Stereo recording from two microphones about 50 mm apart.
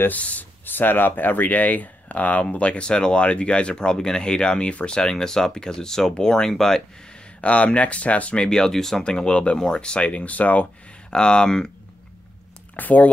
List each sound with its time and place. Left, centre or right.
0.1 s speech: left; by 6.8 s centre
7.4 s speech: left
11.1 s speech: centre
12.7 s speech: left